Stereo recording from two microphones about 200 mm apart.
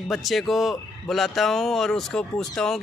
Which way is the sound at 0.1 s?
Centre (ahead or behind).